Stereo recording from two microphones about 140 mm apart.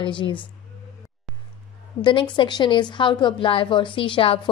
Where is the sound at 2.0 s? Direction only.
35° left (ahead or behind).